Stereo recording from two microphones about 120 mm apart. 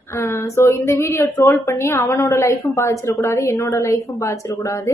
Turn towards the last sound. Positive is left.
turn(degrees=25)  # may be behind; listen again after turning